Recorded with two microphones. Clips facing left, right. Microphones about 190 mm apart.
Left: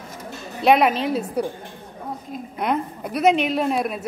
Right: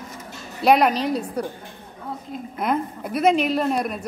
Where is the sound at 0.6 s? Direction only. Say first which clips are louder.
Even; centre (ahead or behind).